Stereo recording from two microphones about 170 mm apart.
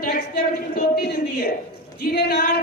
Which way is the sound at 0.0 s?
65° left (ahead or behind).